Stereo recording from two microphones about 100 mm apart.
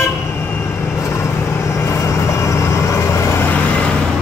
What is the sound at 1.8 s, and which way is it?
Vehicle, 30° left (ahead or behind).